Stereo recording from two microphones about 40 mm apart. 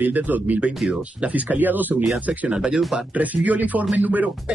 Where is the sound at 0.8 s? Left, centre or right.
Right.